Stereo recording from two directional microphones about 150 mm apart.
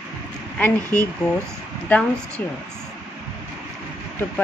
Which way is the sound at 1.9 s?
10° left (ahead or behind).